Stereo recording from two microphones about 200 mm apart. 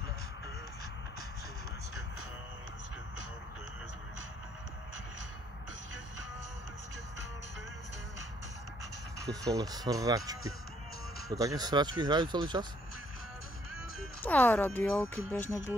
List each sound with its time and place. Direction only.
9.2 s speech: 15° right (ahead or behind)
14.2 s speech: 10° left (ahead or behind)